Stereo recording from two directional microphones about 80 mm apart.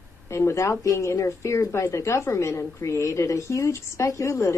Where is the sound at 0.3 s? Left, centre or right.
Left.